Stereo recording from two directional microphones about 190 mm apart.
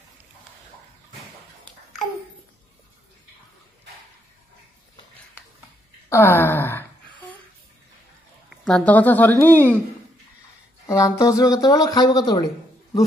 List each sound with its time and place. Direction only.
6.0 s a sound: 15° left (ahead or behind)
8.5 s speech: 5° left (ahead or behind)
10.9 s speech: 15° left (ahead or behind)